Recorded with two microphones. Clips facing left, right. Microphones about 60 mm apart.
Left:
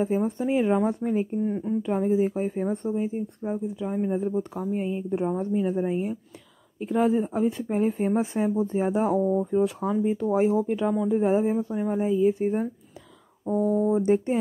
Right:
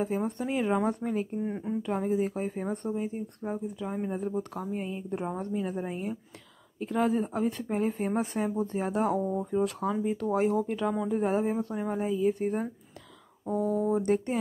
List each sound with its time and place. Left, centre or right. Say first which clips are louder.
0.0 s speech: left 5 dB; centre
1.4 s speech: left 5 dB; centre
1.8 s speech: left 5 dB; centre